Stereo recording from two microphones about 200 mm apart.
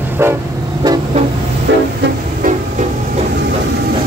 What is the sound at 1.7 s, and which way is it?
Vehicle, 60° right (ahead or behind).